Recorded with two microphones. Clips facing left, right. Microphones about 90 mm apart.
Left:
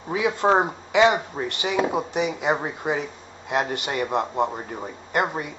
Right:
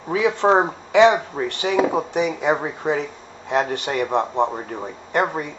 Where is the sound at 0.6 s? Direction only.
Centre (ahead or behind).